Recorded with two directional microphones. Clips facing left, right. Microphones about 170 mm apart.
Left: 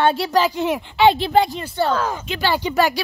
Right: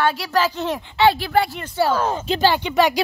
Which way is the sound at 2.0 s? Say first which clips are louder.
Right 3 dB; 30° right (ahead or behind).